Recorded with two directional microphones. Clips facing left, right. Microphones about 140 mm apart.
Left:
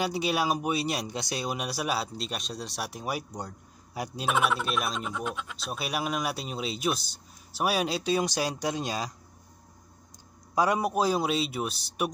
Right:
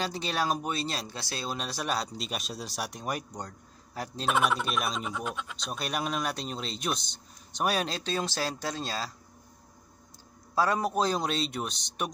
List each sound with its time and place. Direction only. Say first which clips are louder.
0.0 s speech: left 3 dB; 10° left (ahead or behind)
10.5 s speech: left 1 dB; 15° left (ahead or behind)